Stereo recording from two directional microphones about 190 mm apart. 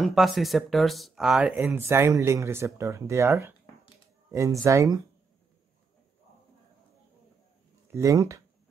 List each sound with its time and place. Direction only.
0.0 s speech: centre (ahead or behind); by 5.0 s 15° right (ahead or behind)
7.9 s speech: 15° right (ahead or behind)